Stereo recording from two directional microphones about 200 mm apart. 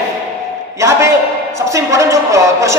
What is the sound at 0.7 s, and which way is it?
A man's voice, 15° right (ahead or behind).